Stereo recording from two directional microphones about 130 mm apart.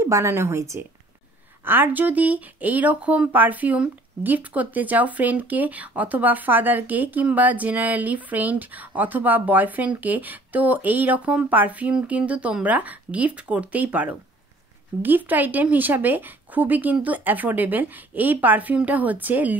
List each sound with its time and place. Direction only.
0.0 s a woman's voice: 20° right (ahead or behind)